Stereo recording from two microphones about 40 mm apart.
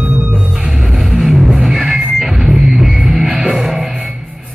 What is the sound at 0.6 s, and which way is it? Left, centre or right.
Music, centre.